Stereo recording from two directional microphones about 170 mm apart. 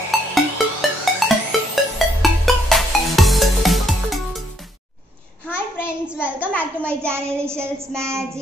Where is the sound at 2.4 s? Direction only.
Centre (ahead or behind).